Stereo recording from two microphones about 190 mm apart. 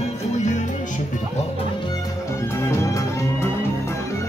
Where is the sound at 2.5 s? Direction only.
15° left (ahead or behind).